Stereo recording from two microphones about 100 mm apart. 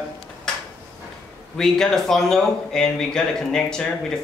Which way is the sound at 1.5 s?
5° left (ahead or behind).